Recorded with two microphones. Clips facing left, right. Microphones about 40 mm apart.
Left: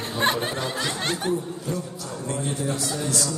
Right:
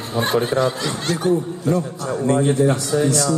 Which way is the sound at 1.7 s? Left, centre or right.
Right.